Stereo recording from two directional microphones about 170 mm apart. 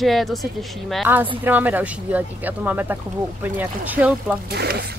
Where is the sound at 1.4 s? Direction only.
10° right (ahead or behind).